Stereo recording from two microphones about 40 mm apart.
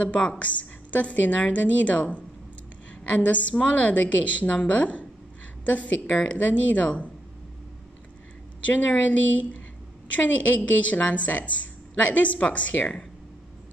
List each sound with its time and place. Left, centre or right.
0.0 s a woman's voice: left
8.6 s a woman's voice: left
10.1 s a woman's voice: left